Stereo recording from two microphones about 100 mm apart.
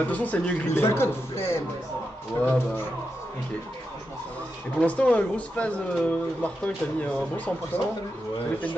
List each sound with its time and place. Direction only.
0.1 s speech: 15° left (ahead or behind)
0.8 s speech: 25° left (ahead or behind)
4.7 s speech: 15° left (ahead or behind)